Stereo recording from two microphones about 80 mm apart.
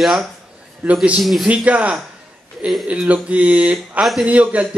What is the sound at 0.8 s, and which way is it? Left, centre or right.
Speech, right.